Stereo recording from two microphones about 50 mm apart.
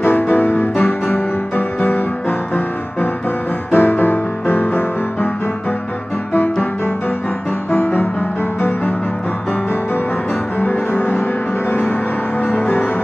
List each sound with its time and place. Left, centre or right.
0.0 s music: left
6.3 s music: left
7.7 s music: left
10.6 s music: left
12.4 s music: left